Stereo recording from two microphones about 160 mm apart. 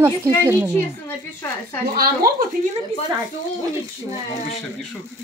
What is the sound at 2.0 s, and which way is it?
Speech, 65° right (ahead or behind).